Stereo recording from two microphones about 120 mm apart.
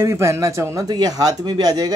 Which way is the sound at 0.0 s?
25° right (ahead or behind).